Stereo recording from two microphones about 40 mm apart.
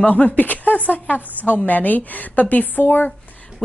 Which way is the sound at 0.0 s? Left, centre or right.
Left.